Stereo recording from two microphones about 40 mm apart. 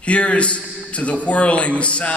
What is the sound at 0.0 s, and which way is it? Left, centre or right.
A man's voice, left.